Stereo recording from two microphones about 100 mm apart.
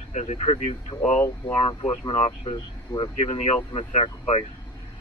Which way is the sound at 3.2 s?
90° left.